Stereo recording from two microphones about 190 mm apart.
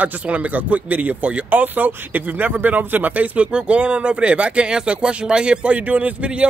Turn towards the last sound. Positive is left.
turn(degrees=-5)  # may be behind; listen again after turning